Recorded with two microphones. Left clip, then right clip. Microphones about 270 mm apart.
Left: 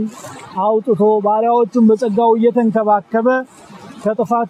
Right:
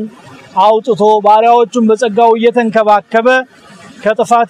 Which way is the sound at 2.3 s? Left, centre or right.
Right.